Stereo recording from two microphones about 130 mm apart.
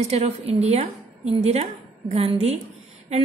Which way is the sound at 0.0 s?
55° right (ahead or behind).